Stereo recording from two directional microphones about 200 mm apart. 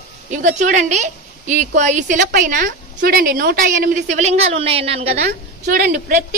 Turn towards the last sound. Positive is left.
turn(degrees=-45)  # may be behind; listen again after turning